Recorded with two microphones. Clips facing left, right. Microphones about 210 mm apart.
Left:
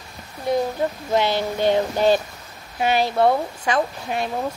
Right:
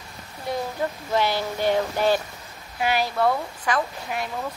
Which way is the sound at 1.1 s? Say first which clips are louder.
Left 3 dB; 20° left (ahead or behind).